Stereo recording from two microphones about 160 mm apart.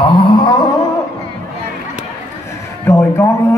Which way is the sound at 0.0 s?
30° left (ahead or behind).